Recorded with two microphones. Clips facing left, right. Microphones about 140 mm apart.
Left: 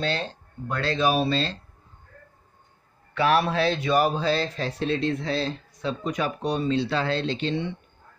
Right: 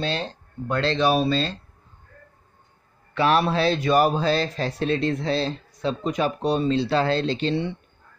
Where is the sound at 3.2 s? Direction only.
30° right (ahead or behind); by 5.3 s 45° right (ahead or behind).